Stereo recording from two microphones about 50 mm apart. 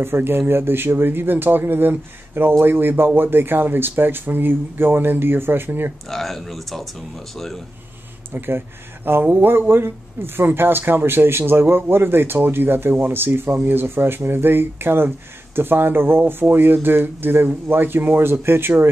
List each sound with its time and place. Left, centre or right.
0.0 s speech: right
6.0 s speech: centre
8.3 s speech: right